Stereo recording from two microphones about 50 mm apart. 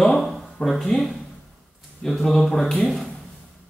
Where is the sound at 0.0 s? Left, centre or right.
Centre.